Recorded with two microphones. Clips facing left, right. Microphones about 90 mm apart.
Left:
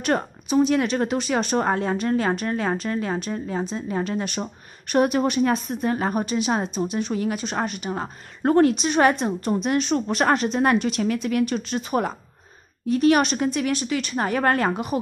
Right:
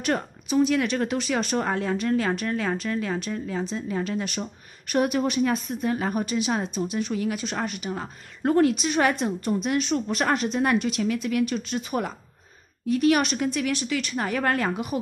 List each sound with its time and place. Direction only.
0.5 s a woman's voice: 25° left (ahead or behind)
9.1 s a woman's voice: 25° left (ahead or behind)
9.5 s a woman's voice: 35° left (ahead or behind)